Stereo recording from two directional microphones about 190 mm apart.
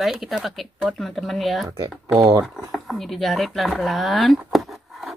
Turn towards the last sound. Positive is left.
turn(degrees=0)  # may be behind; listen again after turning